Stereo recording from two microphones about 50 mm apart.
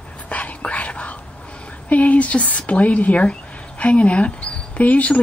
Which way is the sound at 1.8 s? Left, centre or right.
Left.